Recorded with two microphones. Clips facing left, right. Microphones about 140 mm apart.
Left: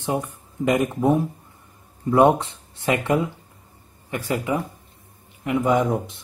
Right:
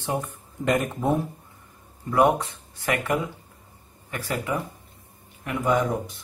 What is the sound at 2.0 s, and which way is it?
A man's voice, 25° left (ahead or behind).